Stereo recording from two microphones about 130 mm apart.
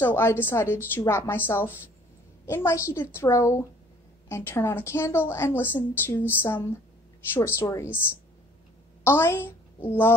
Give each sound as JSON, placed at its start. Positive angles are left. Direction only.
{"t": 0.0, "sound": "a woman's voice", "side_deg": 20}
{"t": 9.0, "sound": "a woman's voice", "side_deg": 20}